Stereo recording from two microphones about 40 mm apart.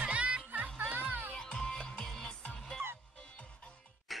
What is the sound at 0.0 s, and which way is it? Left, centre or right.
Music, right.